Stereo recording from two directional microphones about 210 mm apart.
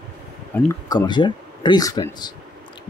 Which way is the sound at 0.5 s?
15° left (ahead or behind).